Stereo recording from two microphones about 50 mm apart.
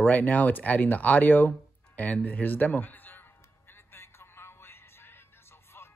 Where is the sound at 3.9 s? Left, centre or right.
Left.